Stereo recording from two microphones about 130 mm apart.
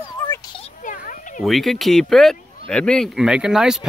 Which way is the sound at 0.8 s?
85° left.